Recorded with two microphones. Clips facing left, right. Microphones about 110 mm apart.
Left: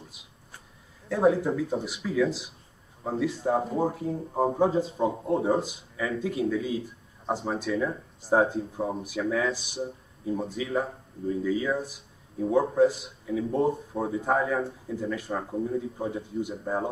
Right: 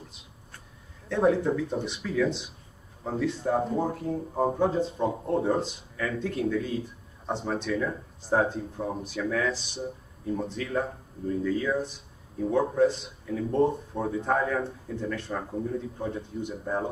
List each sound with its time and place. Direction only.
1.0 s speech: 5° left (ahead or behind)
8.8 s speech: 20° left (ahead or behind)
9.3 s speech: 10° left (ahead or behind)